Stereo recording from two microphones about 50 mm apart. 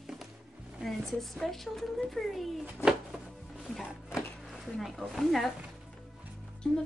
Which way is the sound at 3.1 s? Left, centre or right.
Centre.